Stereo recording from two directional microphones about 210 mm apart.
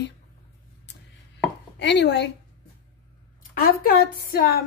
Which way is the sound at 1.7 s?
55° left (ahead or behind).